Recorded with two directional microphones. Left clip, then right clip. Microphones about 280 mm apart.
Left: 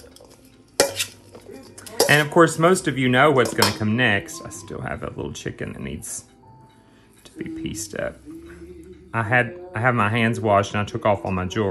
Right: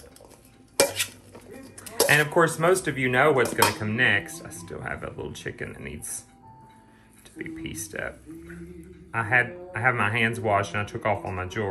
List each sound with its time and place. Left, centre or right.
0.7 s dishes: centre
2.0 s speech: left
3.4 s speech: centre
3.8 s speech: centre
7.3 s speech: centre
9.1 s speech: centre